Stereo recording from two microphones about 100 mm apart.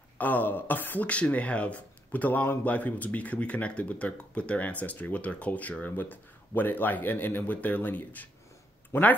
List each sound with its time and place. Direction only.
0.2 s speech: 15° left (ahead or behind)